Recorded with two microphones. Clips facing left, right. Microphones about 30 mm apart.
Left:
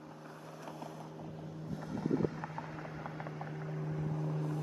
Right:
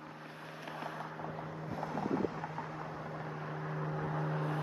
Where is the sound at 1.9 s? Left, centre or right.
Centre.